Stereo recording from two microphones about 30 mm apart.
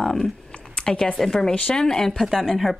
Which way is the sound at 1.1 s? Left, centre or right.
Centre.